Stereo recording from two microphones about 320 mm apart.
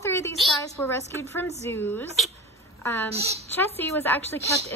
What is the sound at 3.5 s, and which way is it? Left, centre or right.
Speech, centre.